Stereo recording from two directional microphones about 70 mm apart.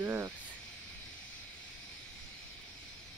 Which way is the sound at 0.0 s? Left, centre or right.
Right.